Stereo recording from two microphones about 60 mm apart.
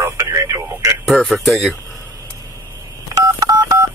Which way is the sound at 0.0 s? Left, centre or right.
Right.